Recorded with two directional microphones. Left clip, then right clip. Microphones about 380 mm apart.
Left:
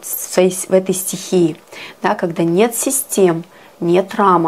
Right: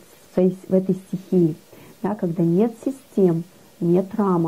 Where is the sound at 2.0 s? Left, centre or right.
Centre.